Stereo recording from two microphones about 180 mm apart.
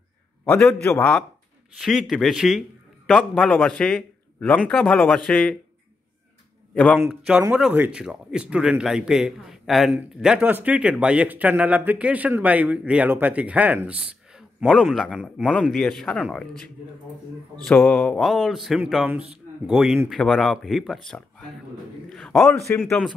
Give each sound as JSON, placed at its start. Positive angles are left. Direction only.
{"t": 0.5, "sound": "a man's voice", "side_deg": 5}
{"t": 6.7, "sound": "a man's voice", "side_deg": 5}
{"t": 22.1, "sound": "a sound", "side_deg": 0}
{"t": 22.8, "sound": "speech", "side_deg": 0}